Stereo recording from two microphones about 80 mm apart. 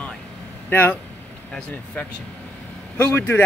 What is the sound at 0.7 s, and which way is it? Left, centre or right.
Speech, left.